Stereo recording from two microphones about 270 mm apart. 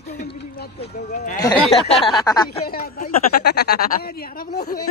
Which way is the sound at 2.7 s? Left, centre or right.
Left.